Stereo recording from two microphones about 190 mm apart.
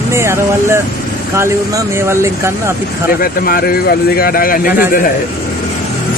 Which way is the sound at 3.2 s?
50° left (ahead or behind).